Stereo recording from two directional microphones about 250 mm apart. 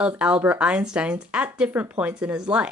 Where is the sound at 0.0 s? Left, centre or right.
Centre.